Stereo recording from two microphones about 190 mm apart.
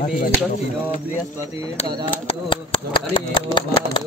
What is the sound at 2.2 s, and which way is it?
Speech, 30° left (ahead or behind).